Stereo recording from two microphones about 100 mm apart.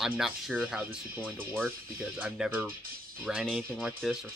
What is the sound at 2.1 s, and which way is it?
Speech, 10° right (ahead or behind).